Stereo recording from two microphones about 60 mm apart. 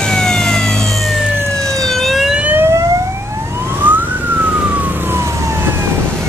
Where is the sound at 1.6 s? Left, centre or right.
Right.